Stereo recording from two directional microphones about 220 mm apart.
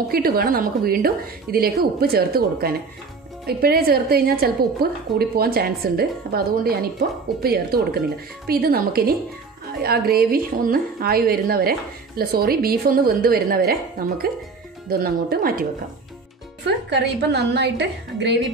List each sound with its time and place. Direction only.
0.1 s a woman's voice: 45° right (ahead or behind)
16.6 s a woman's voice: 50° right (ahead or behind)